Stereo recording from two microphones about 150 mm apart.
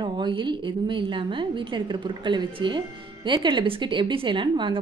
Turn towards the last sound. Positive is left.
turn(degrees=-30)  # may be behind; listen again after turning